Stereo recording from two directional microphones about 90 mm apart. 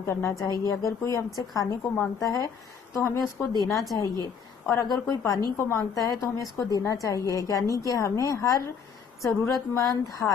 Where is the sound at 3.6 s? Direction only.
40° left (ahead or behind).